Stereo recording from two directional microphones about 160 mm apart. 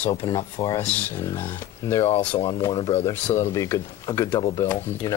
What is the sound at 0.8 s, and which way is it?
Speech, 10° left (ahead or behind).